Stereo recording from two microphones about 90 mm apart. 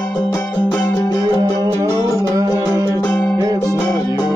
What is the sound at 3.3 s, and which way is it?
Music, 40° right (ahead or behind).